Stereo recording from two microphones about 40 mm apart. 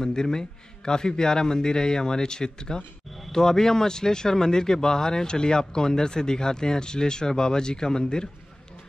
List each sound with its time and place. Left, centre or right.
0.0 s speech: centre